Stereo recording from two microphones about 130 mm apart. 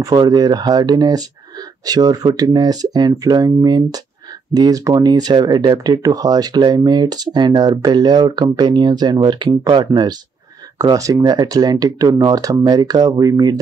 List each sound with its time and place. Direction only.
0.0 s speech: 30° right (ahead or behind)